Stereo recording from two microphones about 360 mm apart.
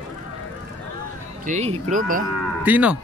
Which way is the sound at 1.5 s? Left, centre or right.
Centre.